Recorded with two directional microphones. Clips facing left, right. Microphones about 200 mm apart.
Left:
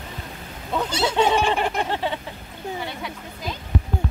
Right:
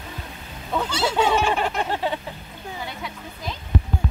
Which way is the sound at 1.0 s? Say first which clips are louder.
Left 1 dB; 15° left (ahead or behind).